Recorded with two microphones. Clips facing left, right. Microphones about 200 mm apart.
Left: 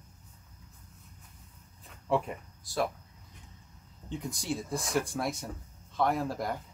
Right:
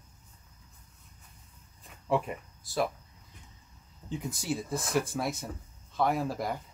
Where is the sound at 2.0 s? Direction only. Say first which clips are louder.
Even; centre (ahead or behind).